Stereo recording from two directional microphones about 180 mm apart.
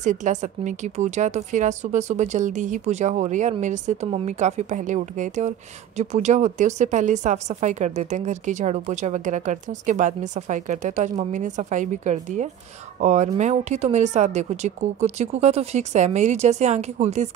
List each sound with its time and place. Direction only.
0.0 s a woman's voice: 45° right (ahead or behind)